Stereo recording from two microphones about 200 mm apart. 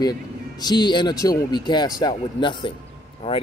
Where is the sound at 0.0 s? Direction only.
20° left (ahead or behind).